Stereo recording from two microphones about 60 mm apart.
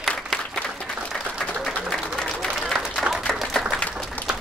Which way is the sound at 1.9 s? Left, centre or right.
Centre.